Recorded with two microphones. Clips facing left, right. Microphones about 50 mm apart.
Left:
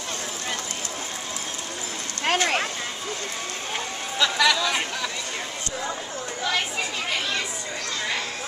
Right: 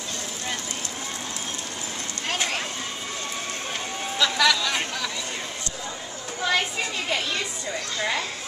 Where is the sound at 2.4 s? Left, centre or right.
Left.